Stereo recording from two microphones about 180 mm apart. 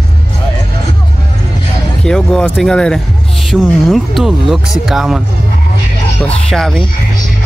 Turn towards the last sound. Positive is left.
turn(degrees=0)  # may be behind; listen again after turning